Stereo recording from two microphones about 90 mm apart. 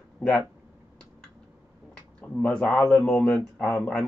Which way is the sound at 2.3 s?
10° left (ahead or behind).